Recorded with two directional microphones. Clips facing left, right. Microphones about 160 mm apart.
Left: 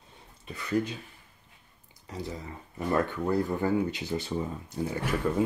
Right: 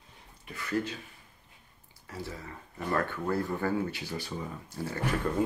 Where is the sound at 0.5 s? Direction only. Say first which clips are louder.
Left 3 dB; 20° left (ahead or behind).